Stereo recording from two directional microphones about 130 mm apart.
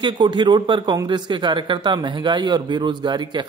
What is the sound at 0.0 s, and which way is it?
Speech, 35° right (ahead or behind).